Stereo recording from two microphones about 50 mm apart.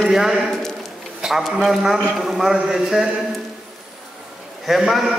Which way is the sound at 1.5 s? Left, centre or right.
Centre.